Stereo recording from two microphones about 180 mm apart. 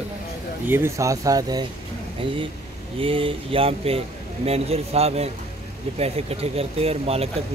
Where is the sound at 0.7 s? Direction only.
15° right (ahead or behind).